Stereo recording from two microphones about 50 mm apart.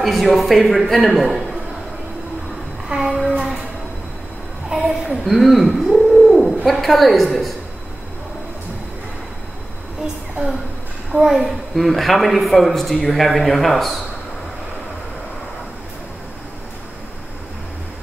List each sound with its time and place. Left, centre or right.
0.0 s a woman's voice: centre
2.9 s child singing: centre
4.6 s a woman's voice: centre
5.2 s speech: centre
11.1 s a woman's voice: centre